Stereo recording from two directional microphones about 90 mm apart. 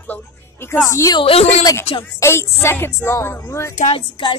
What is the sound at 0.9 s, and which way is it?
Speech, 35° left (ahead or behind).